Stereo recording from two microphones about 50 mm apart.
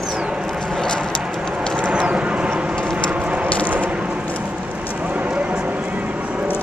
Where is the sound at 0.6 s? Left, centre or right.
Centre.